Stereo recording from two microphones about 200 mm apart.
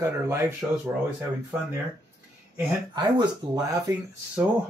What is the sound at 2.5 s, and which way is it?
Speech, 20° right (ahead or behind).